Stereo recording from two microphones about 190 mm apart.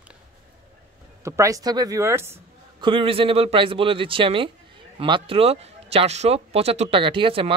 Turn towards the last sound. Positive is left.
turn(degrees=-25)  # may be behind; listen again after turning